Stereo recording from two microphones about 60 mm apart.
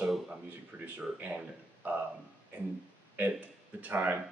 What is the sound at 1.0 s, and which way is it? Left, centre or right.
Speech, right.